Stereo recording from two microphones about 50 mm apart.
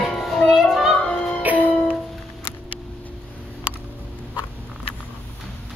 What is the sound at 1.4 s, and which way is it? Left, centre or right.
Music, right.